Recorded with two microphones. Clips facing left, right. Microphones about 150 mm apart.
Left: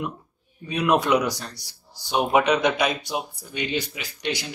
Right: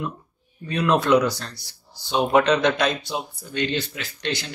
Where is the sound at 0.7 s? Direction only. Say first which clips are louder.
Right 1 dB; 15° left (ahead or behind).